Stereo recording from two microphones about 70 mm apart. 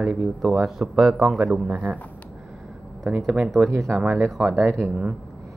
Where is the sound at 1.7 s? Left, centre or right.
Centre.